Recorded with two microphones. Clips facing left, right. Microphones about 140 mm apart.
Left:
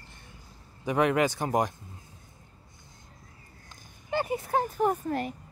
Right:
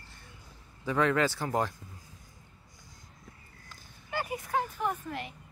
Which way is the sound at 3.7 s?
25° left (ahead or behind).